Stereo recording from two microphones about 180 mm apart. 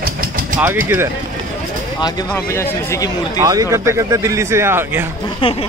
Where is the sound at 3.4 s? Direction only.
20° right (ahead or behind).